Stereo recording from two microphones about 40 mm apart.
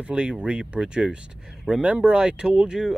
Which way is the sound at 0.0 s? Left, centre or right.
Right.